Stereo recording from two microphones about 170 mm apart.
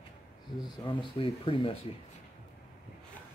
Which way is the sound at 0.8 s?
30° left (ahead or behind).